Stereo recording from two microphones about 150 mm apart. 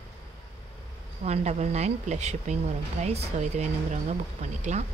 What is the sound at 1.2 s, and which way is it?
Speech, 45° right (ahead or behind).